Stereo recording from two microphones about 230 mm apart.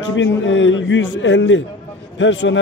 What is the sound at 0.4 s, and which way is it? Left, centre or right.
A man's voice, left.